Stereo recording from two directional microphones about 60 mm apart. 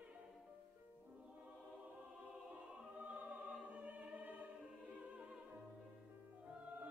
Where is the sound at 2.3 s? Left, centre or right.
Centre.